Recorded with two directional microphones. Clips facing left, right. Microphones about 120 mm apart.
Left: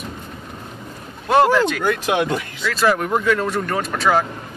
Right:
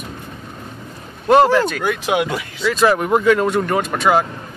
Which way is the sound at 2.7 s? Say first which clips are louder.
Right 3 dB; 10° right (ahead or behind).